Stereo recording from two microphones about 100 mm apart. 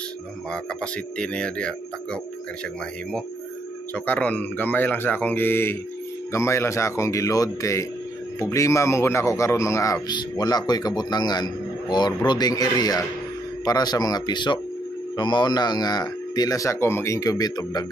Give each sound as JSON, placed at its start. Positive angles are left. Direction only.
{"t": 1.1, "sound": "speech", "side_deg": 10}
{"t": 3.9, "sound": "a man's voice", "side_deg": 15}
{"t": 10.0, "sound": "a man's voice", "side_deg": 45}